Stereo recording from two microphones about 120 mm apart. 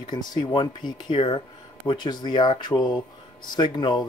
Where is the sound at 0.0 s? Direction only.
35° left (ahead or behind).